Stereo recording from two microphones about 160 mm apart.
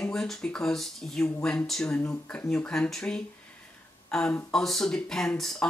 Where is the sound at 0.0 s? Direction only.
5° left (ahead or behind).